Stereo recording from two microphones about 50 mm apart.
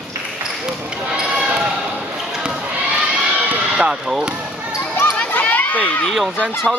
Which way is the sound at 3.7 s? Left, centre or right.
Right.